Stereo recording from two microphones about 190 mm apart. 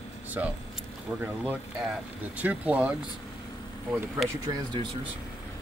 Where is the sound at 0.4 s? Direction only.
15° right (ahead or behind).